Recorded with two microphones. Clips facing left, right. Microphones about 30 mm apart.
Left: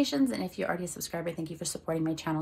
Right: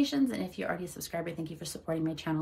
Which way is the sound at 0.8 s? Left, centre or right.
Left.